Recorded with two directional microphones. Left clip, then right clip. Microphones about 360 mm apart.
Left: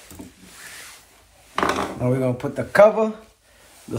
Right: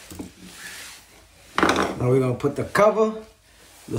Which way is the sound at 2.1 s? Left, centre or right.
Centre.